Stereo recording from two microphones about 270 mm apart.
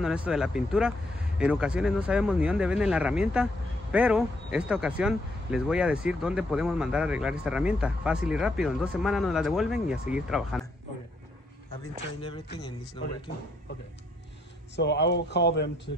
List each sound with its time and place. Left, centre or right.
0.0 s speech: centre
11.8 s speech: centre
14.8 s speech: left